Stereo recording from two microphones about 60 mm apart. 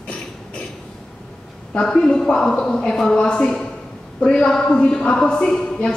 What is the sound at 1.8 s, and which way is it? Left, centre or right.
A woman's voice, centre.